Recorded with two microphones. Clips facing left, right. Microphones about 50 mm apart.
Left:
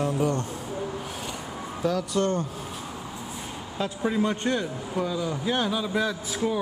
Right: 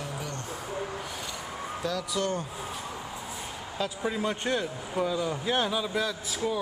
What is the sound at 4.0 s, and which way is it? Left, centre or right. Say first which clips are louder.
Speech: left 6 dB; centre.